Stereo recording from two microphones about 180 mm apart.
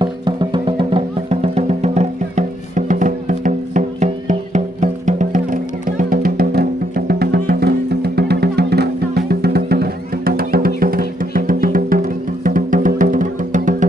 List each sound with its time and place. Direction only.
0.0 s music: 25° right (ahead or behind); by 13.8 s 45° right (ahead or behind)